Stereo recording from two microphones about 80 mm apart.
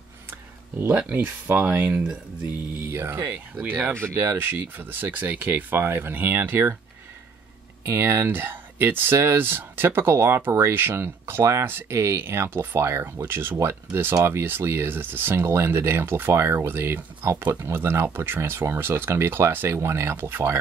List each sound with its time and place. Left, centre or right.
0.3 s speech: right
2.8 s speech: right
3.6 s speech: right
4.1 s speech: right
7.8 s speech: right